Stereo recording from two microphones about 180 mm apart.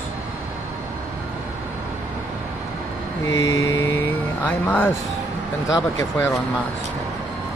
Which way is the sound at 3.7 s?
15° left (ahead or behind).